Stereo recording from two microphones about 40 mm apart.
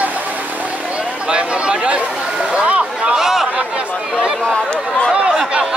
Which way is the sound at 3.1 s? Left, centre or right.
Centre.